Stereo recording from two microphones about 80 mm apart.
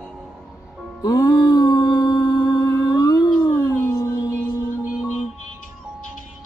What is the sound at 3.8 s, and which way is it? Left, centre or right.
Music, left.